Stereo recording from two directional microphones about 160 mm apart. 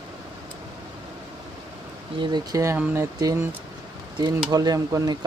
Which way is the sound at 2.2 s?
25° right (ahead or behind).